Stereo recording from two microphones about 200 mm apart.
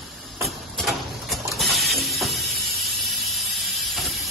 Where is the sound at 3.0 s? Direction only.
Centre (ahead or behind).